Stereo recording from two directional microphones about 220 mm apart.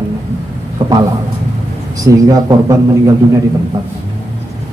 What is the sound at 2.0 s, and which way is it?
A man's voice, 15° right (ahead or behind).